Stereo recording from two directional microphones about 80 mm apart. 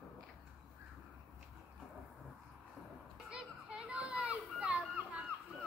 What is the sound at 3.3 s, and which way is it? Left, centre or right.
Children playing, centre.